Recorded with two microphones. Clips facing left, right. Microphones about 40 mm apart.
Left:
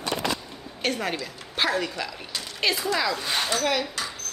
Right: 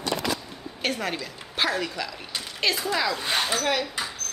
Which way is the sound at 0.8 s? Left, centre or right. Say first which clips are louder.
Left 1 dB; centre.